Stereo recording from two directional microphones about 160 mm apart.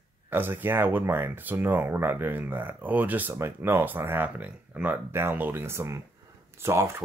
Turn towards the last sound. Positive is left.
turn(degrees=-15)  # may be behind; listen again after turning